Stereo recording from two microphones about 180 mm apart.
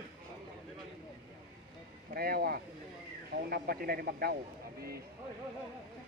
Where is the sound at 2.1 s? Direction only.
55° right (ahead or behind).